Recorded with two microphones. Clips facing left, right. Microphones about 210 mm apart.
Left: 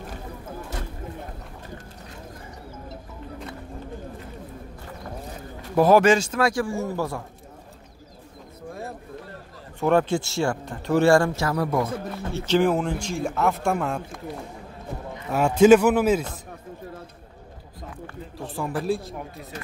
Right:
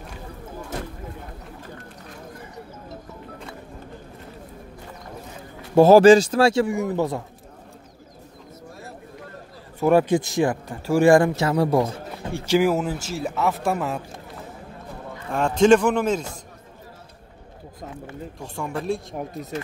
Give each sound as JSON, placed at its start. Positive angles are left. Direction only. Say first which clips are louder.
{"t": 5.8, "sound": "speech", "louder": "right 6 dB", "side_deg": -30}
{"t": 9.8, "sound": "speech", "louder": "right 3 dB", "side_deg": -10}
{"t": 12.3, "sound": "speech", "louder": "right 1 dB", "side_deg": -10}
{"t": 15.2, "sound": "a man's voice", "louder": "left 2 dB", "side_deg": 5}
{"t": 18.4, "sound": "speech", "louder": "left 2 dB", "side_deg": 0}